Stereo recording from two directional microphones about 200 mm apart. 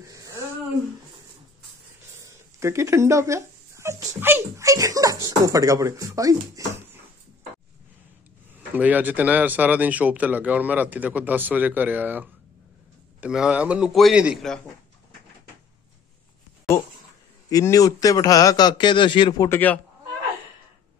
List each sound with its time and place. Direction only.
0.0 s a sound: 15° right (ahead or behind)
2.1 s speech: 15° right (ahead or behind)
8.5 s a man's voice: 10° right (ahead or behind)
17.5 s a man's voice: 15° left (ahead or behind)